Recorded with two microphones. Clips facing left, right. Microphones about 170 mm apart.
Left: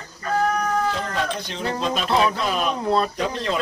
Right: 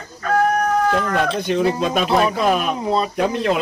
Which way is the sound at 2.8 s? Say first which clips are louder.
Right 1 dB; 5° right (ahead or behind).